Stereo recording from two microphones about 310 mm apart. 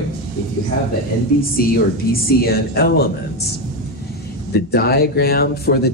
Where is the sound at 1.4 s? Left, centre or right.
Left.